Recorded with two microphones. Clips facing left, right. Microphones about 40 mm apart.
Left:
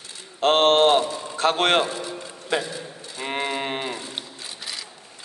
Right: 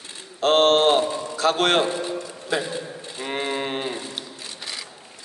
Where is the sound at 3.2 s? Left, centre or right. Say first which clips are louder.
Even; left.